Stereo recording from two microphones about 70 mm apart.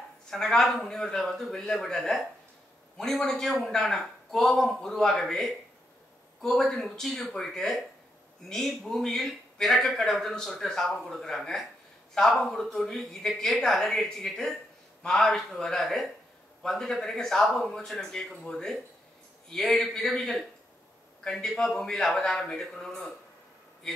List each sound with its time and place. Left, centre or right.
0.3 s a man's voice: centre